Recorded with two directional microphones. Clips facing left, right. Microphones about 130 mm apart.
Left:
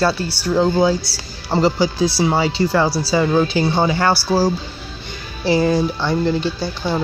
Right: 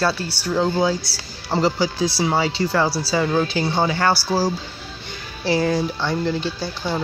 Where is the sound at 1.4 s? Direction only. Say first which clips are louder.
Left 3 dB; 30° left (ahead or behind).